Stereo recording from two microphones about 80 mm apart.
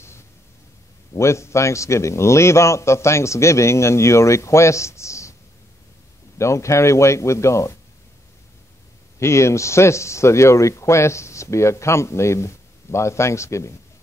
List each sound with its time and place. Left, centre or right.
1.1 s a man's voice: left
6.3 s a man's voice: left
9.2 s a man's voice: left